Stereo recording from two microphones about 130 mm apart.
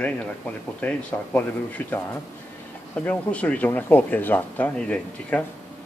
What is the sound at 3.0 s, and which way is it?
Speech, 10° left (ahead or behind).